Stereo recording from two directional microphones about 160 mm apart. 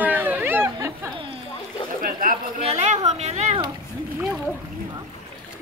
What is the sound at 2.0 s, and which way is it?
Chatter, 60° right (ahead or behind).